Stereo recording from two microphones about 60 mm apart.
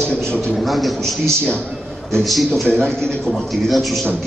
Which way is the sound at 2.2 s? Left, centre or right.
Centre.